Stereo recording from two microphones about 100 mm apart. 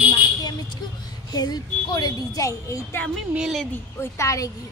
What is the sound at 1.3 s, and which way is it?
Speech, 40° left (ahead or behind).